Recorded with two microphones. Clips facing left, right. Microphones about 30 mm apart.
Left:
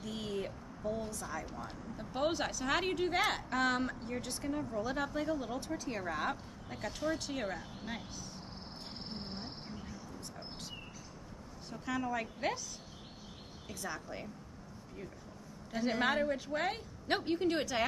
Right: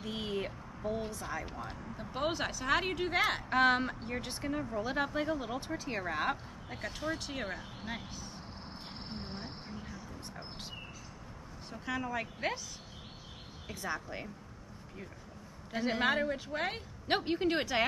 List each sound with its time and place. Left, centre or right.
0.0 s a sound: right
1.5 s speech: centre
3.4 s speech: right
9.7 s a sound: right
11.7 s a woman's voice: centre
13.7 s speech: right
15.7 s speech: centre